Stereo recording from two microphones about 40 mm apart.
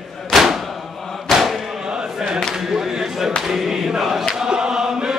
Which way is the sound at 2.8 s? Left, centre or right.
Centre.